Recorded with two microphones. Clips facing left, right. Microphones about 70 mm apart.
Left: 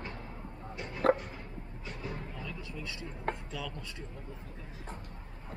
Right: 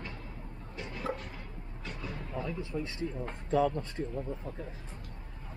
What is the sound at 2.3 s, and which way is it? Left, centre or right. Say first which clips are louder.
Speech: right 7 dB; right.